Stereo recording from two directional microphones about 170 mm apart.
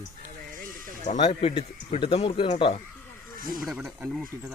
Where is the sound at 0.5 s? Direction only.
55° right (ahead or behind).